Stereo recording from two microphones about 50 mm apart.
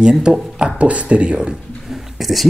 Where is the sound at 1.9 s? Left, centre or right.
Centre.